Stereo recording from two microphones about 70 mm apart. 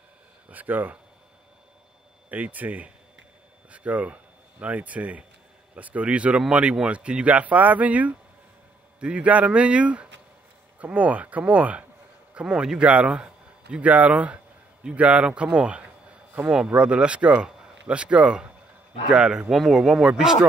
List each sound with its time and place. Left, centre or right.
0.5 s speech: right
2.2 s speech: right